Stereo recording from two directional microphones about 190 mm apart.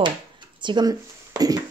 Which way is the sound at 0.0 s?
25° right (ahead or behind).